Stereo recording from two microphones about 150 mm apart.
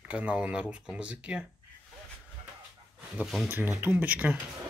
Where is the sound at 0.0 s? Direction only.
10° right (ahead or behind).